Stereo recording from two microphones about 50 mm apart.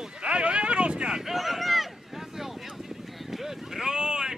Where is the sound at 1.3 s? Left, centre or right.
Centre.